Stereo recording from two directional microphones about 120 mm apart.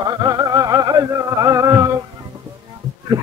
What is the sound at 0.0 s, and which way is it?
Music, 30° right (ahead or behind).